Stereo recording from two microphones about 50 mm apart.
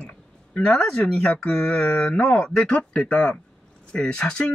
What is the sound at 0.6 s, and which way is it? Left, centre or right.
Speech, centre.